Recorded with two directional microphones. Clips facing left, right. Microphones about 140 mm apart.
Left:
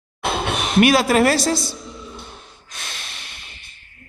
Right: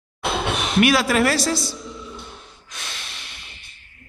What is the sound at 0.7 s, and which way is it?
Speech, 45° left (ahead or behind).